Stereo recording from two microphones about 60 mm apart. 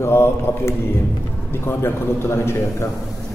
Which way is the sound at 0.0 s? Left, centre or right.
Left.